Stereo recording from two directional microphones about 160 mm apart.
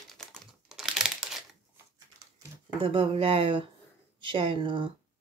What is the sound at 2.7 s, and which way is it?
Speech, 35° right (ahead or behind).